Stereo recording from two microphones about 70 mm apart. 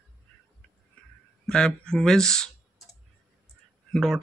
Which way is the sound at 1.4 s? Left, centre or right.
Centre.